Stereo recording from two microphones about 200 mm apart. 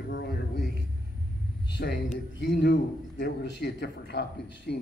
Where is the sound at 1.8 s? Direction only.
55° left (ahead or behind).